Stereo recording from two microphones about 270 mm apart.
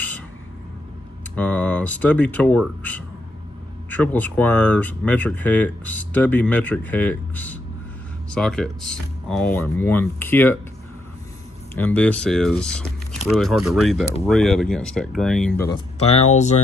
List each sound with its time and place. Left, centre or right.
1.3 s speech: centre
11.7 s speech: centre
16.0 s speech: left